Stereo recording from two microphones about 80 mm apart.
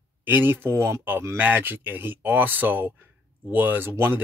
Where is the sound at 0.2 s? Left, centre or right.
Right.